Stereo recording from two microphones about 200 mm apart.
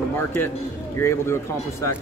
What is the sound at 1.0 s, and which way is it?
Speech, 15° left (ahead or behind).